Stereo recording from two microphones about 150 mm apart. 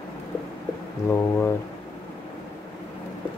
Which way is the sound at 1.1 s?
15° left (ahead or behind).